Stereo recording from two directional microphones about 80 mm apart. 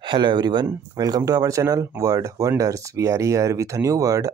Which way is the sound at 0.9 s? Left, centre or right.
Right.